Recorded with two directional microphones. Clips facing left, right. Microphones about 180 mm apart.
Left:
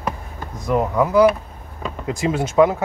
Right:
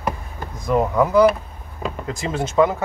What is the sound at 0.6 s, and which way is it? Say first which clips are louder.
Speech: right 1 dB; 5° left (ahead or behind).